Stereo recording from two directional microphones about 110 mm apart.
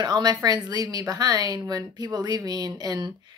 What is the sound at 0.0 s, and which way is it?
A woman's voice, 40° right (ahead or behind).